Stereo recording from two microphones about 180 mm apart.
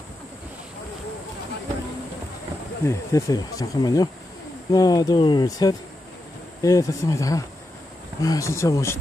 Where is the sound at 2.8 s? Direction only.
20° left (ahead or behind).